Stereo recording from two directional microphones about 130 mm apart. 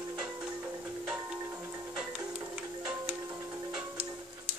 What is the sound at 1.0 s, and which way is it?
Music, 10° right (ahead or behind).